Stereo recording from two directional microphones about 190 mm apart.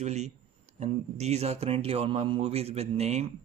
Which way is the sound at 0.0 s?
35° right (ahead or behind).